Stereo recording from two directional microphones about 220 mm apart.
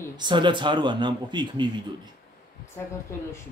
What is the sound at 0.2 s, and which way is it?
A man's voice, 20° right (ahead or behind).